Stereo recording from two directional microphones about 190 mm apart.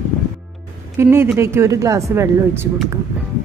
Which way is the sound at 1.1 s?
10° right (ahead or behind).